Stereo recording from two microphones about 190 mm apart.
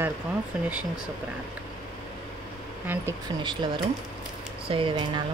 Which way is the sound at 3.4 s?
25° right (ahead or behind).